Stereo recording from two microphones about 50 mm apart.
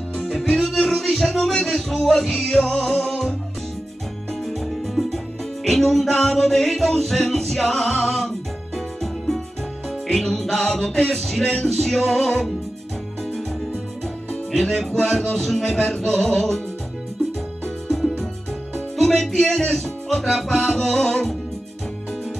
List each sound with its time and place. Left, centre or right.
0.4 s music: centre
4.5 s music: centre
14.5 s music: centre
17.8 s music: centre